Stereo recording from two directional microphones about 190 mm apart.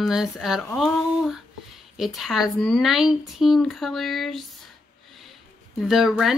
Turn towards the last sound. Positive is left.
turn(degrees=0)  # may be behind; listen again after turning